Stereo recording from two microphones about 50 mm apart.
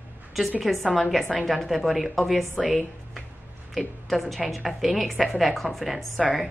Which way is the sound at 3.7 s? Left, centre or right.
Centre.